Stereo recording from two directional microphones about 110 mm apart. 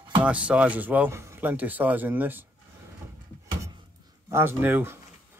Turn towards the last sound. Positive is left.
turn(degrees=-20)  # may be behind; listen again after turning